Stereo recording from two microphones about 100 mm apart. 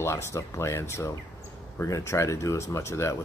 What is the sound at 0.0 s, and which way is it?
Speech, 25° left (ahead or behind).